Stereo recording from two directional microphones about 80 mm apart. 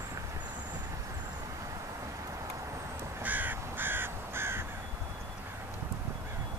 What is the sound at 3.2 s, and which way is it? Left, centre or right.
Crow, right.